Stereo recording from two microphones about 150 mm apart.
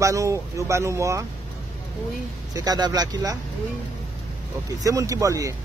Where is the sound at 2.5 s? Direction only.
25° right (ahead or behind).